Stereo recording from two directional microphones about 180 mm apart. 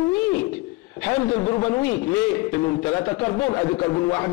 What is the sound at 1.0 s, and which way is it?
Speech, 20° left (ahead or behind).